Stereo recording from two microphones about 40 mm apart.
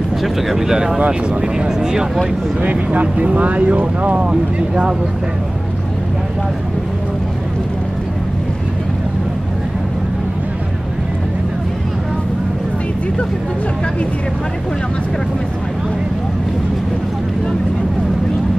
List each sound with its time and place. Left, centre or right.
0.2 s speech: centre
0.6 s speech: centre
2.6 s speech: right
4.3 s speech: right